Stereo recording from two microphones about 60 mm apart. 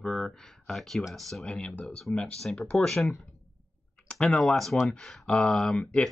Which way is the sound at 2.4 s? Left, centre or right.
Centre.